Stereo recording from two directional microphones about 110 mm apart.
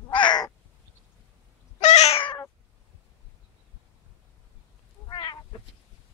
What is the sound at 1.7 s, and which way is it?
Cat, 90° left.